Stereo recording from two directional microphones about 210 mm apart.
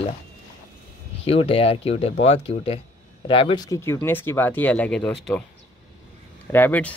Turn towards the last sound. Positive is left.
turn(degrees=5)  # may be behind; listen again after turning